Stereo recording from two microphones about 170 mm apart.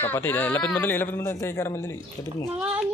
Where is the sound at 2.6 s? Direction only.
5° right (ahead or behind).